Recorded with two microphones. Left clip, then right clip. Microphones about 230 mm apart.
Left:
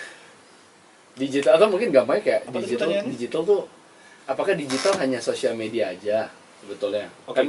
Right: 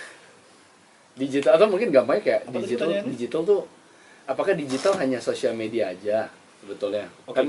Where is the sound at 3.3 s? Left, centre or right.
Right.